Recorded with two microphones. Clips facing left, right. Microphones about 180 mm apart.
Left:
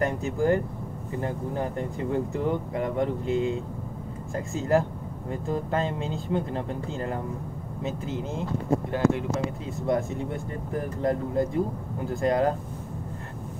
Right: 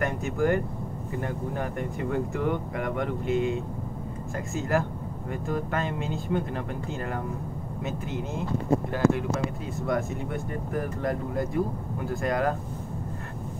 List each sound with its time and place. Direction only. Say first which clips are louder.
0.0 s speech: left 1 dB; 30° left (ahead or behind)
9.8 s speech: left 2 dB; 25° left (ahead or behind)